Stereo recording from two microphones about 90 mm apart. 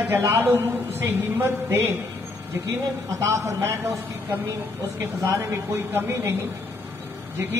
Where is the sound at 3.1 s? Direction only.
35° right (ahead or behind).